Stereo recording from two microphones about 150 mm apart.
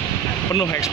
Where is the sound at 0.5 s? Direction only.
20° left (ahead or behind).